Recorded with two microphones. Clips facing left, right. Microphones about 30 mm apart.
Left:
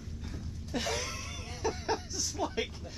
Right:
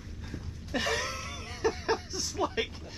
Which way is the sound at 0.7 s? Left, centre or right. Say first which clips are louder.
Right 4 dB; right.